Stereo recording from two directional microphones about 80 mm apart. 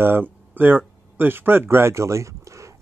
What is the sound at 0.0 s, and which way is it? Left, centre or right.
Speech, right.